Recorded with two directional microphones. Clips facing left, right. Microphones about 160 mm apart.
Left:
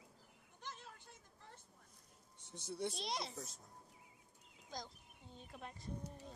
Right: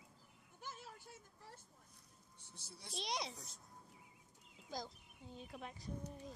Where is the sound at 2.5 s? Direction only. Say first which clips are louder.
Left 12 dB; 20° left (ahead or behind).